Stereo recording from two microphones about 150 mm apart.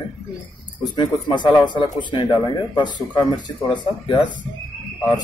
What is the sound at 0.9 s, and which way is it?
Speech, 30° left (ahead or behind).